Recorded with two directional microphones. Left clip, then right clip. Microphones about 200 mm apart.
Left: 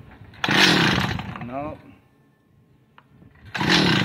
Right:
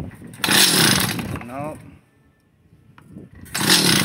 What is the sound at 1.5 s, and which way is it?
Speech, 5° left (ahead or behind).